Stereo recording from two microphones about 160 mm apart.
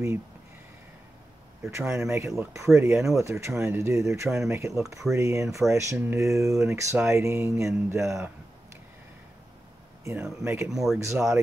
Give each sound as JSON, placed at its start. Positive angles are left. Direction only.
{"t": 1.7, "sound": "speech", "side_deg": -15}
{"t": 10.0, "sound": "speech", "side_deg": -15}
{"t": 10.7, "sound": "speech", "side_deg": 0}
{"t": 11.1, "sound": "speech", "side_deg": -15}